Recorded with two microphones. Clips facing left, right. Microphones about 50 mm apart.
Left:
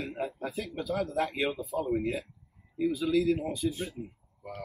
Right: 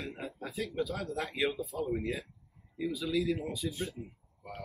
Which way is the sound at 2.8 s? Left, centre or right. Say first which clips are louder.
Left 5 dB; left.